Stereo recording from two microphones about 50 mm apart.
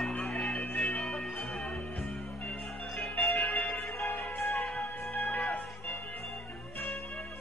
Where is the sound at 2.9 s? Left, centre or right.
Centre.